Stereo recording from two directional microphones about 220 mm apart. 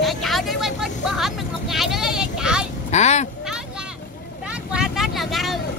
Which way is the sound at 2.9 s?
30° left (ahead or behind).